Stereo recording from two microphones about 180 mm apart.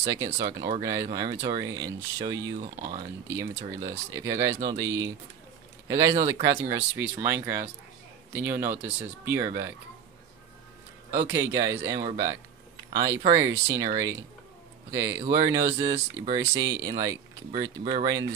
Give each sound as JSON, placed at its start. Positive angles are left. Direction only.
{"t": 0.0, "sound": "speech", "side_deg": -20}
{"t": 11.1, "sound": "speech", "side_deg": -15}